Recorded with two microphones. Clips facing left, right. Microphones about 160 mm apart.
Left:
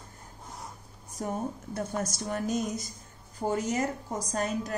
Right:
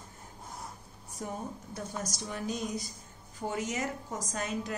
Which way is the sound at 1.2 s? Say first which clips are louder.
Left 5 dB; 45° left (ahead or behind).